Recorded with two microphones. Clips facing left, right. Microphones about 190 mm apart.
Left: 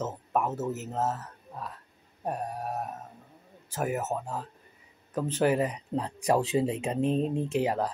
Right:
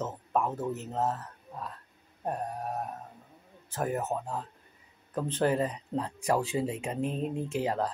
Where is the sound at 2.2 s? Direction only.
10° left (ahead or behind).